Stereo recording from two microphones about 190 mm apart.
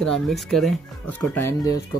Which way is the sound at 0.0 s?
Centre (ahead or behind).